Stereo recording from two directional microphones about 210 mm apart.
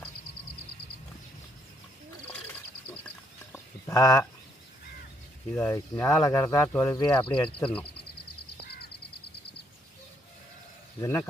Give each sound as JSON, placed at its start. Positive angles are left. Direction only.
{"t": 3.5, "sound": "chicken", "side_deg": 15}
{"t": 5.5, "sound": "speech", "side_deg": 10}
{"t": 11.0, "sound": "speech", "side_deg": 10}